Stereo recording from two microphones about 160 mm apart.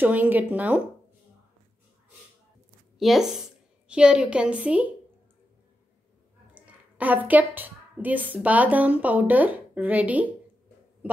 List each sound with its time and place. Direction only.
0.0 s a woman's voice: 10° right (ahead or behind)
3.0 s a woman's voice: centre (ahead or behind)
6.5 s a woman's voice: 10° right (ahead or behind)